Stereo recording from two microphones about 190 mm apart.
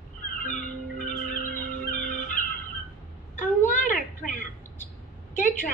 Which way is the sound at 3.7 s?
45° left (ahead or behind).